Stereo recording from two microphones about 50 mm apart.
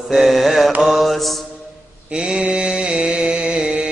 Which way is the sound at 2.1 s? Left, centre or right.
Right.